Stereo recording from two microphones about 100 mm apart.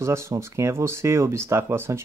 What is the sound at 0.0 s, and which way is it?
Speech, 30° right (ahead or behind).